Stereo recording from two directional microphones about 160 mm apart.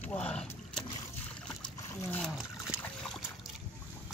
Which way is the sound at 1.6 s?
20° left (ahead or behind).